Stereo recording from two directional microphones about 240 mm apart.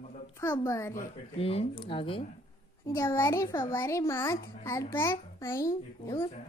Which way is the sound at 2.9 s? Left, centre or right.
Centre.